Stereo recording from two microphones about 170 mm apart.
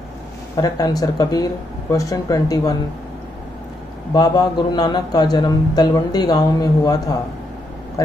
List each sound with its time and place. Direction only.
0.6 s a man's voice: 20° left (ahead or behind)
4.1 s a man's voice: 25° left (ahead or behind)